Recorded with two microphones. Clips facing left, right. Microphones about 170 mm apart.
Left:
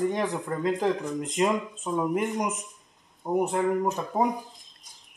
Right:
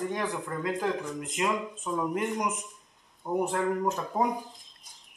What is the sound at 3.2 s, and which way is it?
Speech, 20° left (ahead or behind).